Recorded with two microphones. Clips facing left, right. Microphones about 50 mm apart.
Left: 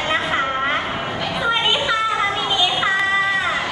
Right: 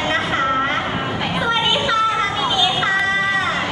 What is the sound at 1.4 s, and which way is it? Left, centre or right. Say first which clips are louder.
Music: even; centre.